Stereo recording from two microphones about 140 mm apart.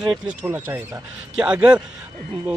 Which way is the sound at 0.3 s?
10° right (ahead or behind).